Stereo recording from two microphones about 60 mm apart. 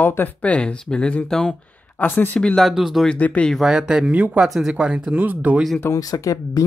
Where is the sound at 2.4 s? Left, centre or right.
Centre.